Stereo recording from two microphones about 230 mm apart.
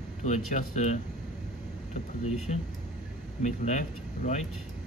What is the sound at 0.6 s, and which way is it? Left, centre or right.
Speech, left.